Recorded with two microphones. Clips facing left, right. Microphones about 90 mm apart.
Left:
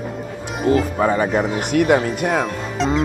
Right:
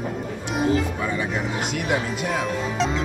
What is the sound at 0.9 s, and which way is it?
Speech, 45° left (ahead or behind).